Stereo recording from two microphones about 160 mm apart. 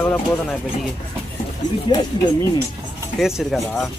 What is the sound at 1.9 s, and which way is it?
Speech, 35° left (ahead or behind).